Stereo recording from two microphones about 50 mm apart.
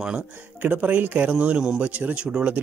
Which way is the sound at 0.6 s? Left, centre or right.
Right.